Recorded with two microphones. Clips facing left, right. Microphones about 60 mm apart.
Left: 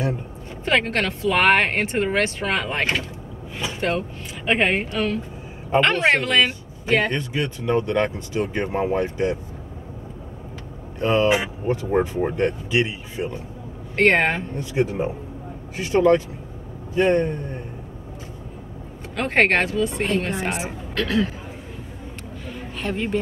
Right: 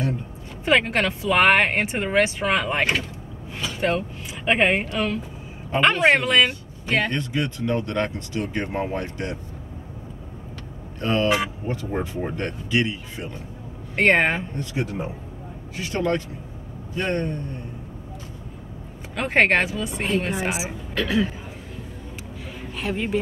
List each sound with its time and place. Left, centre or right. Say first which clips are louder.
0.7 s speech: right 1 dB; centre
4.5 s speech: right 1 dB; centre
11.0 s speech: left 3 dB; centre
12.4 s speech: left 2 dB; centre
13.9 s speech: left 1 dB; centre
14.6 s speech: left 5 dB; left
19.1 s speech: even; centre
22.8 s speech: even; centre